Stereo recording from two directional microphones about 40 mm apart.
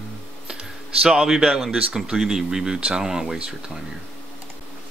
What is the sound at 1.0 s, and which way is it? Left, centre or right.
Speech, centre.